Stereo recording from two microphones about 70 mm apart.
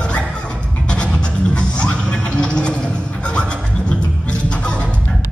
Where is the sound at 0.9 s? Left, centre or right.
Centre.